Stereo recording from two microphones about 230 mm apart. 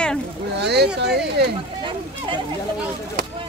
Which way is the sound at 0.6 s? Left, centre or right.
Right.